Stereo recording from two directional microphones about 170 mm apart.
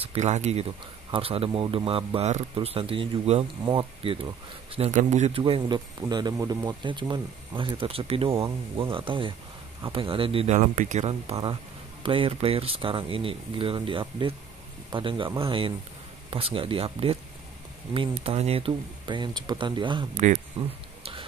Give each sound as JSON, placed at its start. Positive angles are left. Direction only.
{"t": 0.0, "sound": "speech", "side_deg": -40}
{"t": 5.4, "sound": "speech", "side_deg": -25}